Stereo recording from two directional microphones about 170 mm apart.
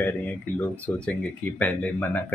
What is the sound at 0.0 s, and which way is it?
Speech, 10° left (ahead or behind).